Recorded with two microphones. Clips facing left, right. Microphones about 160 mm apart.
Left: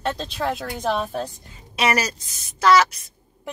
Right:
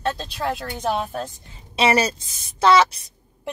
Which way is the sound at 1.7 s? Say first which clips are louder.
Right 3 dB; 25° right (ahead or behind).